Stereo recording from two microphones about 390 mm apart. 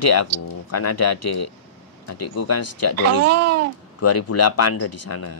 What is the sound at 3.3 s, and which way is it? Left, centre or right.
Speech, right.